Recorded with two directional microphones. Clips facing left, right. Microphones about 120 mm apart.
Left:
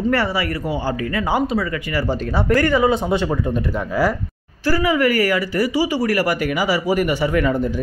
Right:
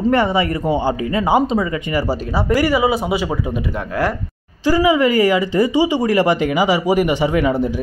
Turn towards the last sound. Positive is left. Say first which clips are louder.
# right 2 dB
turn(degrees=-15)  # may be behind; listen again after turning